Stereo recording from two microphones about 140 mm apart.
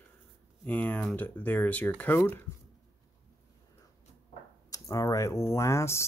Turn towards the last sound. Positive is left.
turn(degrees=20)  # may be behind; listen again after turning